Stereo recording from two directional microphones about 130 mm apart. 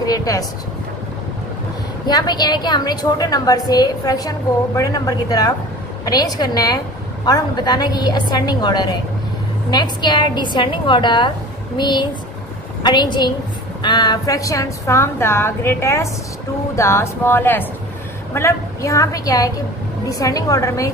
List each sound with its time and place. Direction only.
0.0 s a woman's voice: 30° left (ahead or behind)
2.0 s a woman's voice: 35° left (ahead or behind)